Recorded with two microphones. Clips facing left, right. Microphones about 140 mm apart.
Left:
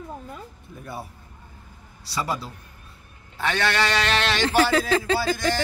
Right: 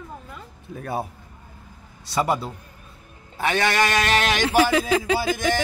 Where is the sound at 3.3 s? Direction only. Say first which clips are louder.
Right 2 dB; 10° right (ahead or behind).